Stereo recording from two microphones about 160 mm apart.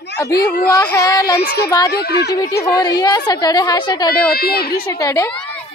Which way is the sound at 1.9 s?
90° left.